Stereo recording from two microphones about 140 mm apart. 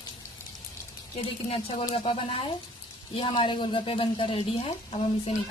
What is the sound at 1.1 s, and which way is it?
A woman's voice, 45° left (ahead or behind).